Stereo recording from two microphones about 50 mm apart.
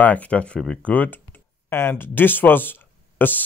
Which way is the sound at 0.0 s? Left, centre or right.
Left.